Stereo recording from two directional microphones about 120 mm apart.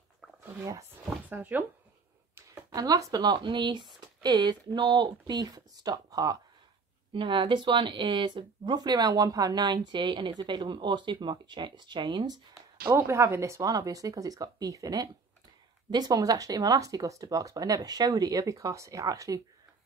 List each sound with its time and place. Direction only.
1.3 s speech: 15° right (ahead or behind)
2.7 s speech: 30° right (ahead or behind)
7.1 s speech: 45° right (ahead or behind)
12.9 s speech: 25° right (ahead or behind)